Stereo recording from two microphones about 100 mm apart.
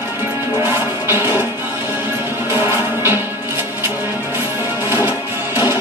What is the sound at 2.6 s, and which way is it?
Music, 20° right (ahead or behind).